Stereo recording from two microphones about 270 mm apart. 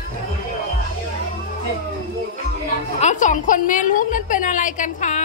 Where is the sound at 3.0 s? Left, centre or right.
Left.